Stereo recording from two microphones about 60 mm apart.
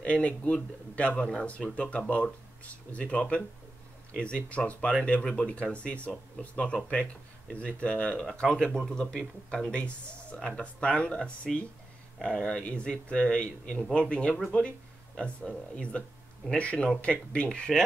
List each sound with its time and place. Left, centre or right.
0.0 s speech: centre